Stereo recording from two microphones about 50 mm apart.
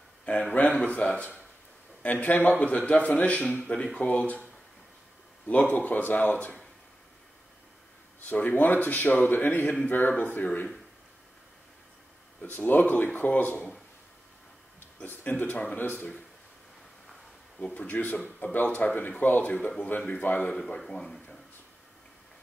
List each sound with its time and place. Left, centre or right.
0.2 s speech: left
5.5 s speech: left
8.3 s speech: left
12.4 s speech: left
15.0 s speech: left
17.6 s speech: left
17.8 s speech: left
20.9 s a sound: centre